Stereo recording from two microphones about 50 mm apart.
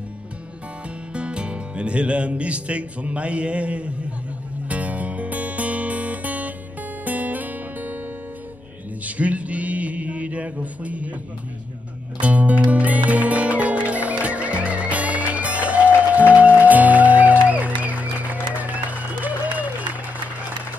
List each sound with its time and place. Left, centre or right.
1.1 s speech: right
4.6 s music: right
9.0 s mantra: right
12.2 s music: right